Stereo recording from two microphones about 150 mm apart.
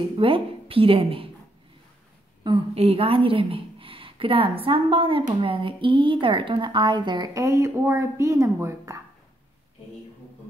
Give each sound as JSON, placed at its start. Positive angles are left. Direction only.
{"t": 0.2, "sound": "a woman's voice", "side_deg": -35}
{"t": 2.4, "sound": "a woman's voice", "side_deg": -35}